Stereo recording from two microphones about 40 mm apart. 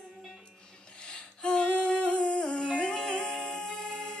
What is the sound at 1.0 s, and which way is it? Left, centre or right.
Humming, left.